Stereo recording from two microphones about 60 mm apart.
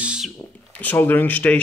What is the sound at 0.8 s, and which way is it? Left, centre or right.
Speech, left.